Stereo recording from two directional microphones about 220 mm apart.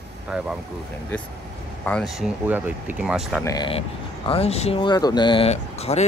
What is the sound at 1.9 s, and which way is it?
Speech, centre (ahead or behind).